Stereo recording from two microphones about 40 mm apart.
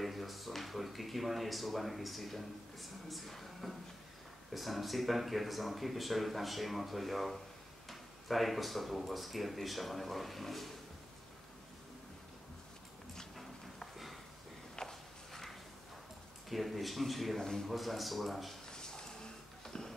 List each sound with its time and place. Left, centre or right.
0.0 s speech: centre
14.8 s walk: centre
16.4 s speech: centre
17.4 s a man's voice: centre
17.6 s speech: centre
18.7 s a sound: centre